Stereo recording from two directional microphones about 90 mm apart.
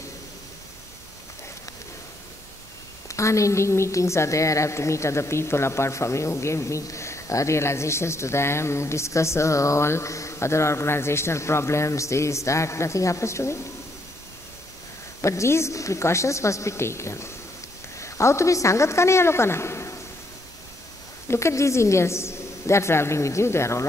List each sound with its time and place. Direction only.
3.1 s a woman's voice: 35° left (ahead or behind)
15.2 s a woman's voice: 30° left (ahead or behind)
21.3 s a woman's voice: 30° left (ahead or behind)